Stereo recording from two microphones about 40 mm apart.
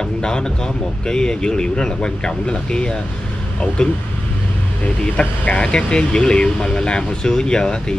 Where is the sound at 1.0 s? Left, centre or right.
Centre.